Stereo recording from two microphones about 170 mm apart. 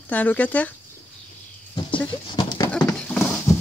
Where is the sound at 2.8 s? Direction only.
10° left (ahead or behind).